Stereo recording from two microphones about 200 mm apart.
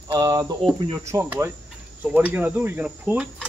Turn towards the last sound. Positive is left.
turn(degrees=-5)  # may be behind; listen again after turning